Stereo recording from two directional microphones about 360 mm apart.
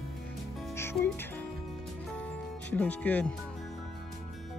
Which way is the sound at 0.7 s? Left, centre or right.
Centre.